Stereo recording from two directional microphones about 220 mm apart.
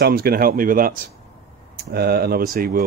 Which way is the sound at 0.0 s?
45° right (ahead or behind).